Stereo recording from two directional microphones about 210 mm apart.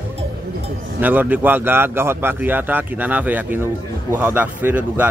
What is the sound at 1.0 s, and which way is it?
Speech, 10° right (ahead or behind).